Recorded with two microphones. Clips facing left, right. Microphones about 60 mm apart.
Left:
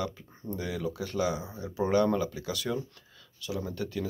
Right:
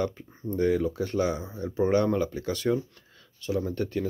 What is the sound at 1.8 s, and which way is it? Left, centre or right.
Speech, right.